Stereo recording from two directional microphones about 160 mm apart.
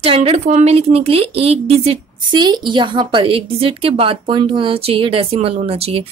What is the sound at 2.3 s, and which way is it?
A woman's voice, 25° right (ahead or behind).